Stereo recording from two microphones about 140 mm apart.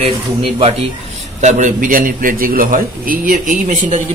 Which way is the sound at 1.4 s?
60° right (ahead or behind).